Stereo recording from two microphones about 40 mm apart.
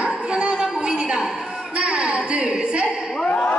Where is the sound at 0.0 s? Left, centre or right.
Right; by 1.4 s centre.